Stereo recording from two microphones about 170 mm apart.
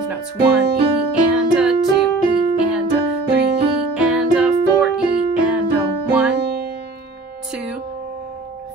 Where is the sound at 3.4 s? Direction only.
70° right (ahead or behind).